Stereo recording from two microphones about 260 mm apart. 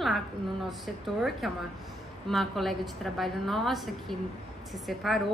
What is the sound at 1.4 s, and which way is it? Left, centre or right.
A woman's voice, centre.